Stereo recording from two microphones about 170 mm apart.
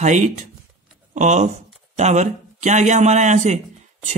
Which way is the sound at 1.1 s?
45° right (ahead or behind).